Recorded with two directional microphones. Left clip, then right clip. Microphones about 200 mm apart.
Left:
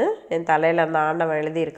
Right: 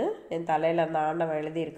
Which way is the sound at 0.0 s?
15° left (ahead or behind).